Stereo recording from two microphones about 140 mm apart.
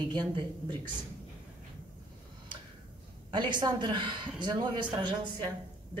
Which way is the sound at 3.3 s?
35° right (ahead or behind).